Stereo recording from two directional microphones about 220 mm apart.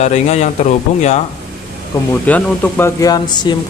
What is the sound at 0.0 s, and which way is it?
Speech, 30° left (ahead or behind).